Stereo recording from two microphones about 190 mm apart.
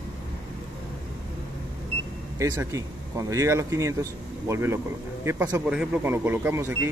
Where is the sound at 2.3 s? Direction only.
15° right (ahead or behind).